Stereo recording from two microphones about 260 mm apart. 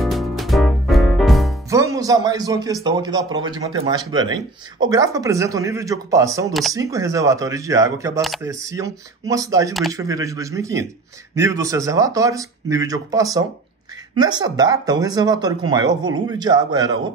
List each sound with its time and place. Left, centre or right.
0.0 s music: centre
1.7 s speech: centre